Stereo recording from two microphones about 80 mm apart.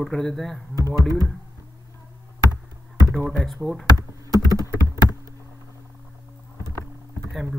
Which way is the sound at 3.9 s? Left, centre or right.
Right.